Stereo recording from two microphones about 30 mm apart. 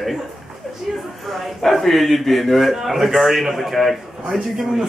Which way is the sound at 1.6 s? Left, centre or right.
Centre.